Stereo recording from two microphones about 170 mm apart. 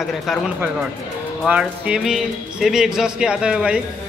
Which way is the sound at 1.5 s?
5° right (ahead or behind).